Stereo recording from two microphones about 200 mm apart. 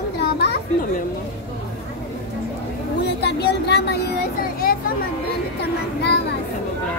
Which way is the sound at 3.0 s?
55° left (ahead or behind).